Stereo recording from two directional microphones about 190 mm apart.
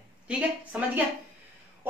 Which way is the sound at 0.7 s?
5° right (ahead or behind).